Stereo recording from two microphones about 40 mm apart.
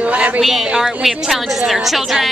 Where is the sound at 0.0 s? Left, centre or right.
Right.